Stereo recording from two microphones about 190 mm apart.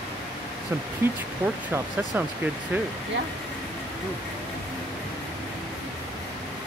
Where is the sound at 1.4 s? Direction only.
10° right (ahead or behind).